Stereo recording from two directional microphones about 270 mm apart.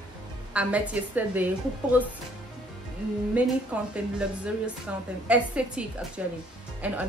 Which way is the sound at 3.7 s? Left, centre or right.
Centre.